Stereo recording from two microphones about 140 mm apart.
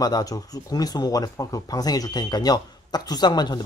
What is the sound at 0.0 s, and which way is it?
Speech, 25° left (ahead or behind).